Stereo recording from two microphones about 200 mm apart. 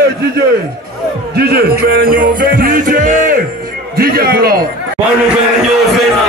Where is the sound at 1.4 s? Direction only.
50° right (ahead or behind).